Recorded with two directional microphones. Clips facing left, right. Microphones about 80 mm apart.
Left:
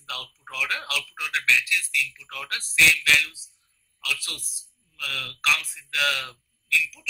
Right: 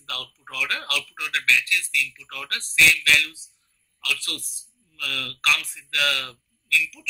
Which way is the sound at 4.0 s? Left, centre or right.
Centre.